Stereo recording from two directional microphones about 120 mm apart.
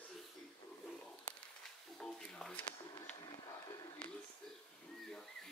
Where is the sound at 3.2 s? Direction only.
35° left (ahead or behind).